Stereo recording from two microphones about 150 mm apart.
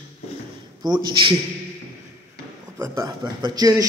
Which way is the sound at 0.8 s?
30° right (ahead or behind).